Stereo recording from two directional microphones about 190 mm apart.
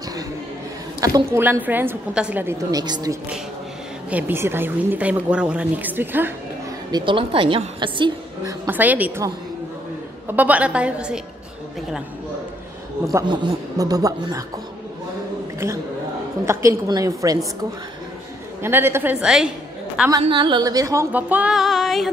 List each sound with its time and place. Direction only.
1.0 s a woman's voice: 15° right (ahead or behind)
4.1 s a woman's voice: 10° right (ahead or behind)
6.9 s a woman's voice: 25° right (ahead or behind)
8.6 s a woman's voice: 10° right (ahead or behind)
13.1 s a woman's voice: 25° right (ahead or behind)
16.4 s a woman's voice: 20° right (ahead or behind)
18.6 s a woman's voice: 10° right (ahead or behind)
20.1 s a woman's voice: 25° right (ahead or behind); by 22.1 s centre (ahead or behind)